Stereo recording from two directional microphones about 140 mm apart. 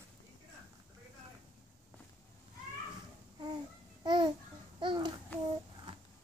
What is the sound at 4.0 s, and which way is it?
Babbling, 30° right (ahead or behind).